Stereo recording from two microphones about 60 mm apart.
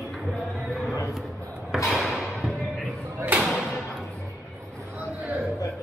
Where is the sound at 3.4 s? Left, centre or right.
Centre.